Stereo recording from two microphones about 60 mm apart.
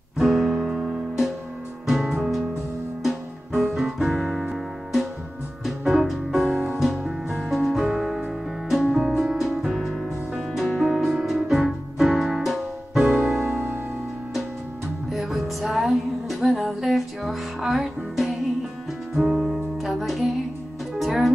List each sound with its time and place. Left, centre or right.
0.2 s music: centre
13.3 s music: right
15.0 s music: centre